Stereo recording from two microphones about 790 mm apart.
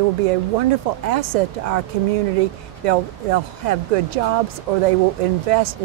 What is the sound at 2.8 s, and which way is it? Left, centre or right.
Speech, right.